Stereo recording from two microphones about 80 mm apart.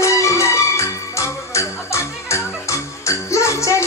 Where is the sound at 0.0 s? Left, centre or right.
Left.